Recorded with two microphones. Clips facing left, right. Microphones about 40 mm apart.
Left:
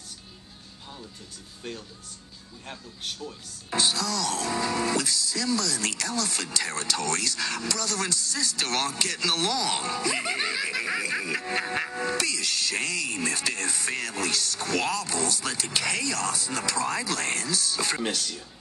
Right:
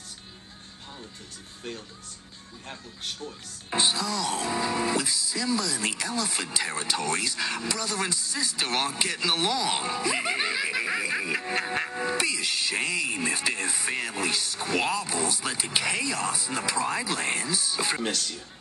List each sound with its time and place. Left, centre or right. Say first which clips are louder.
2.6 s speech: even; centre
3.7 s speech: even; right; by 12.1 s centre
12.1 s speech: right 1 dB; right
17.9 s speech: even; centre